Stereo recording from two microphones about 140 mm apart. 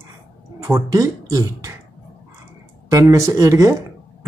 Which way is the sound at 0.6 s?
25° right (ahead or behind).